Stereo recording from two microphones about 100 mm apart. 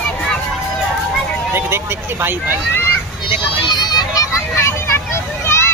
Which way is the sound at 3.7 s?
45° left (ahead or behind).